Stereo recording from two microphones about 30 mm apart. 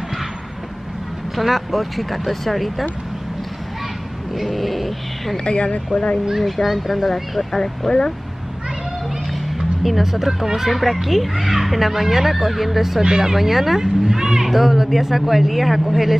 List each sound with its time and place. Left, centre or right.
1.3 s speech: centre
4.4 s speech: centre
5.4 s speech: left
6.4 s speech: centre
7.6 s speech: centre
9.6 s speech: centre
10.7 s speech: centre